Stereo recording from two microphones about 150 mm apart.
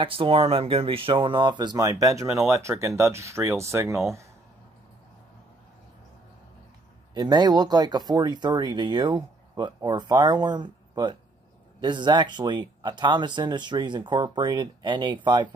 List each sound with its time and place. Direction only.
0.0 s speech: 40° right (ahead or behind); by 4.3 s 20° right (ahead or behind)
7.2 s speech: 25° right (ahead or behind)